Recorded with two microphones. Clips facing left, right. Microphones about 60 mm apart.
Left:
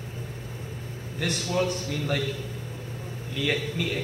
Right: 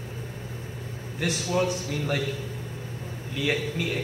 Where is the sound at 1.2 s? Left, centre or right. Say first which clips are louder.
Right 1 dB; centre.